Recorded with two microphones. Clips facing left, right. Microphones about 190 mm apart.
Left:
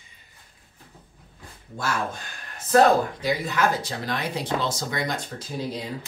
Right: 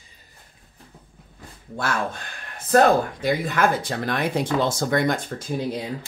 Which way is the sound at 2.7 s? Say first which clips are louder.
Right 1 dB; 55° right (ahead or behind).